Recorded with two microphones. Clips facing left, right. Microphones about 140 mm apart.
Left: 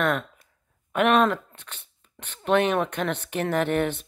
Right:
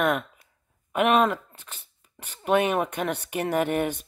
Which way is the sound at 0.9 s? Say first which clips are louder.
Left 1 dB; 5° right (ahead or behind).